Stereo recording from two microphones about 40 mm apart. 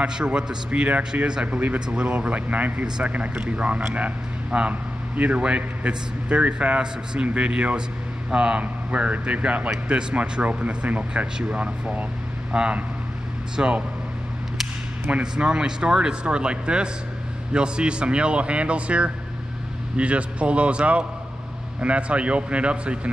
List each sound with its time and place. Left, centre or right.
0.0 s speech: right
0.7 s a man's voice: right
1.9 s a man's voice: right
15.3 s a man's voice: right